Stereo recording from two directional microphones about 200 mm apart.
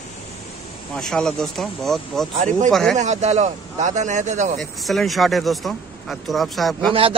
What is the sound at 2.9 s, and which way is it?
A man's voice, 35° right (ahead or behind).